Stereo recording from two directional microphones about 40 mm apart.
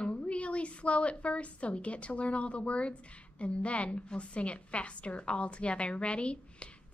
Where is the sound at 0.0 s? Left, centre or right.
Left.